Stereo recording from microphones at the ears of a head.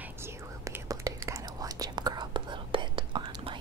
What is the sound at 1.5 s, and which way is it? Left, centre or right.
Whispering, right.